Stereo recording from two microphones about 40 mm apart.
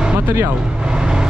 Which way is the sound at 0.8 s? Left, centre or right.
Centre.